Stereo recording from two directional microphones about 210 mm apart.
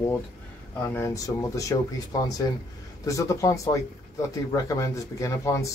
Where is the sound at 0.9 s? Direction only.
15° left (ahead or behind).